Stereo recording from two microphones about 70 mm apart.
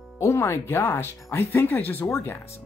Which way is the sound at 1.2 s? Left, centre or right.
Left.